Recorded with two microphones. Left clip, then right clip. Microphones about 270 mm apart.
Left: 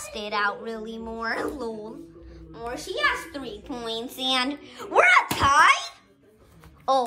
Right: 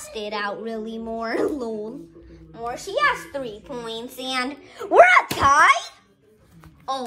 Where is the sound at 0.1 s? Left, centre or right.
Centre.